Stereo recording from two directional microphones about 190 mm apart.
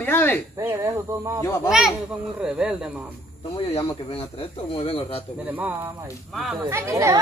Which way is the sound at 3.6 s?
30° left (ahead or behind).